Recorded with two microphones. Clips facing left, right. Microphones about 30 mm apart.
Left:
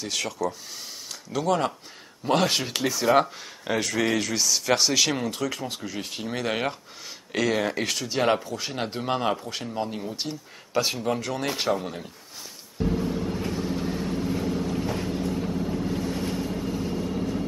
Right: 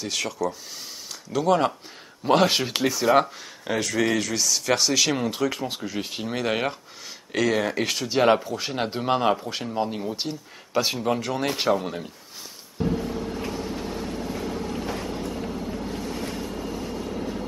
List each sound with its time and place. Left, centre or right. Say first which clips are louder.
0.0 s speech: right 1 dB; centre
5.2 s speech: right 3 dB; centre
12.8 s vehicle: even; centre